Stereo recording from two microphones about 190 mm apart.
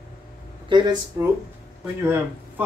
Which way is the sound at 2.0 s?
15° right (ahead or behind).